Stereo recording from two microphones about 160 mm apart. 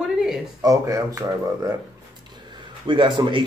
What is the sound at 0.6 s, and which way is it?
Speech, 20° right (ahead or behind).